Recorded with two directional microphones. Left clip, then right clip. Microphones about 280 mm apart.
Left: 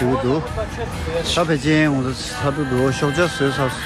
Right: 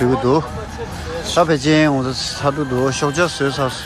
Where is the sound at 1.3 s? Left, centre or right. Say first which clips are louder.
Right 5 dB; centre.